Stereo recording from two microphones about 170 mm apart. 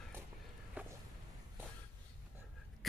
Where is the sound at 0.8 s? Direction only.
10° right (ahead or behind).